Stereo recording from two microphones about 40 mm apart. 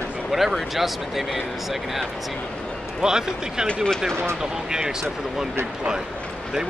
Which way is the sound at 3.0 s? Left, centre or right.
Centre.